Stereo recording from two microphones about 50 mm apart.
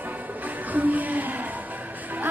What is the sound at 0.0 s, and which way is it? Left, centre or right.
Music, right.